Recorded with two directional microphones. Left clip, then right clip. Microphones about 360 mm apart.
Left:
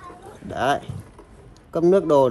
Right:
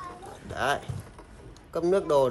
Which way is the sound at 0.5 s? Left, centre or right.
Centre.